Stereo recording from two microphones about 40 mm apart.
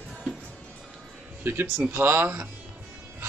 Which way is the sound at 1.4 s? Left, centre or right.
Right.